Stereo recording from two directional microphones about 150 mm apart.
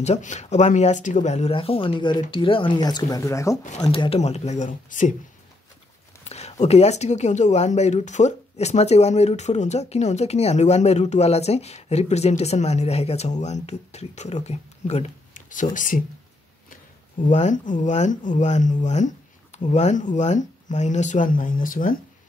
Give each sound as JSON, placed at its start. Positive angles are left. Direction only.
{"t": 0.0, "sound": "speech", "side_deg": 50}
{"t": 3.9, "sound": "speech", "side_deg": 40}
{"t": 6.2, "sound": "speech", "side_deg": 45}